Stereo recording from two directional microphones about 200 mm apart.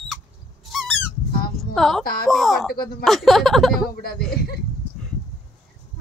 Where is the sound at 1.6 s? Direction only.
Centre (ahead or behind).